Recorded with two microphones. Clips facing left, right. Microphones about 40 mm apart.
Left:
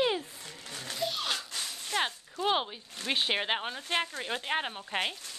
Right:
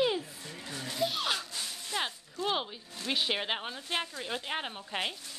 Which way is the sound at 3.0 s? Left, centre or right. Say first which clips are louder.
Left 2 dB; left.